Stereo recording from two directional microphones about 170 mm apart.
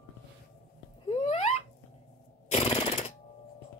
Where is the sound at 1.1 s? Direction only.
40° left (ahead or behind).